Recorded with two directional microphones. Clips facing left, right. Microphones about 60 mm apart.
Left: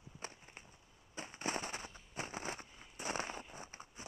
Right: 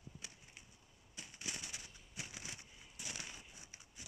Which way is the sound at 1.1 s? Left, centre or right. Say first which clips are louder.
Left 9 dB; left.